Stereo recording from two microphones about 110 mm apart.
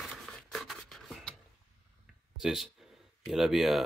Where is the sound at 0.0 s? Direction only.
5° left (ahead or behind).